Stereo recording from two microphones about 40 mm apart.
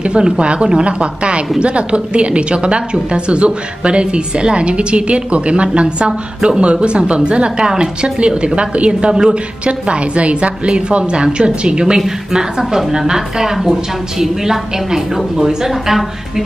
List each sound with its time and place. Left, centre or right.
0.0 s a woman's voice: right; by 16.4 s centre